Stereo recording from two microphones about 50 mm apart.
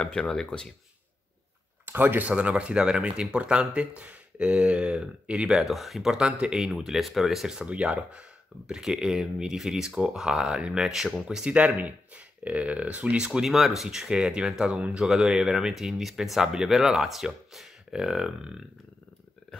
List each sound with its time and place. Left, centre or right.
0.0 s speech: centre
1.9 s speech: right
2.2 s speech: right
5.6 s speech: centre
6.7 s speech: centre
7.5 s speech: right
13.5 s speech: centre